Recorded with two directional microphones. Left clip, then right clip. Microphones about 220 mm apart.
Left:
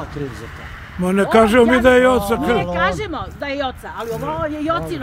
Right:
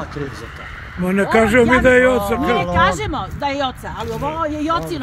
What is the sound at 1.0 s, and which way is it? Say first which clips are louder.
Speech: left 2 dB; 10° left (ahead or behind).